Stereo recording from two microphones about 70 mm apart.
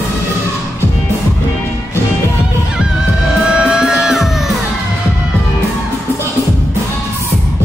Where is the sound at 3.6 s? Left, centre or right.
Centre.